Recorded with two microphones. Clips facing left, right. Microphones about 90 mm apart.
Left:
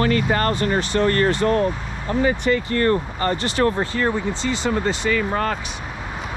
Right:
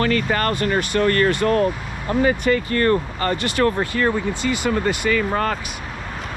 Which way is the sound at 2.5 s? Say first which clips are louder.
Right 1 dB; 50° right (ahead or behind).